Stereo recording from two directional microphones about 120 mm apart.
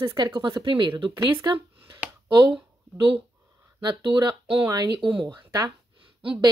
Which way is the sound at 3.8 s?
35° right (ahead or behind).